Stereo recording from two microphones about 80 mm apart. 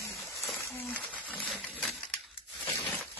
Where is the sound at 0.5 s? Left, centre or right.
Left; by 2.9 s centre.